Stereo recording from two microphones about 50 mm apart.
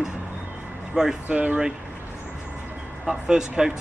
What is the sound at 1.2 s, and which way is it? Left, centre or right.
Speech, right.